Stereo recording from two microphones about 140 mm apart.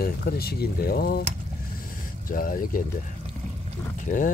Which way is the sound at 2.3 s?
85° left.